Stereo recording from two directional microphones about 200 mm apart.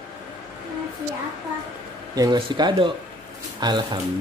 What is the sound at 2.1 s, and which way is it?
Speech, 20° right (ahead or behind).